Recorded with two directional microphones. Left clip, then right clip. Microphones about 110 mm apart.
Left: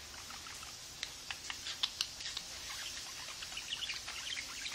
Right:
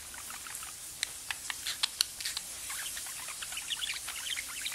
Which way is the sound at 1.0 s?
20° right (ahead or behind).